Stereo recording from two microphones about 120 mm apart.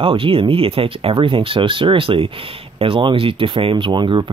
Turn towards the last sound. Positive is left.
turn(degrees=-40)  # may be behind; listen again after turning